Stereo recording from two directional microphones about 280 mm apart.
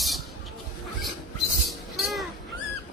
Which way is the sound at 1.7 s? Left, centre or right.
Centre.